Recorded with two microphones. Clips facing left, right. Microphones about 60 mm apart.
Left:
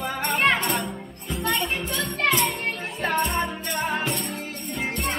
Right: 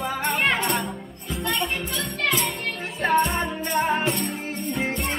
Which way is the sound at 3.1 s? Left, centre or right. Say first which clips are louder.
Right 4 dB; centre.